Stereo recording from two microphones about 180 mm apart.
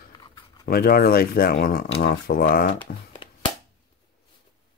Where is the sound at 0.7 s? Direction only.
55° left (ahead or behind).